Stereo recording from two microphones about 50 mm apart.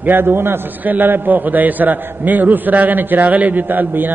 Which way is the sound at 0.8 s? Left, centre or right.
Right.